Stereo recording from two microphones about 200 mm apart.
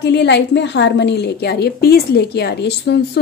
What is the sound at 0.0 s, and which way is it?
A woman's voice, 60° left (ahead or behind).